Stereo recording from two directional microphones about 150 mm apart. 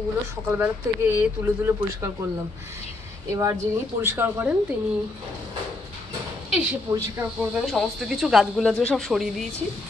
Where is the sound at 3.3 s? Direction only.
20° right (ahead or behind).